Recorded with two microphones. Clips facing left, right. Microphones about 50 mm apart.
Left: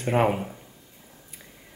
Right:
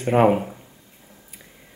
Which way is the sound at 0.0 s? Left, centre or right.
Centre.